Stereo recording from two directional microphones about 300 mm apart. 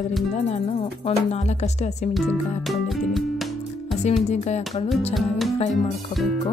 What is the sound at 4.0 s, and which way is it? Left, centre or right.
Speech, left.